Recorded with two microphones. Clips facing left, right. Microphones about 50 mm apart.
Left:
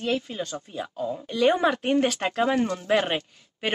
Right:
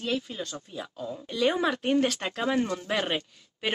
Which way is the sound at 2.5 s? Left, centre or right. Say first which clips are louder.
Left 2 dB; centre.